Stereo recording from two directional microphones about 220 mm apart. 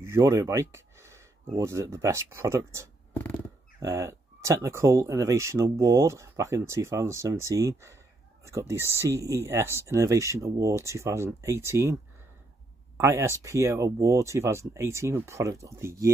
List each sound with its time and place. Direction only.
0.0 s speech: 10° right (ahead or behind)